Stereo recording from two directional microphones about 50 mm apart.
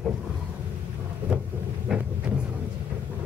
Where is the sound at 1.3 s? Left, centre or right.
Right.